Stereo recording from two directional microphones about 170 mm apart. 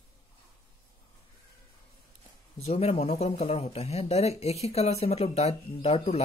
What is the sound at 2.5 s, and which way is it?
Speech, 40° left (ahead or behind).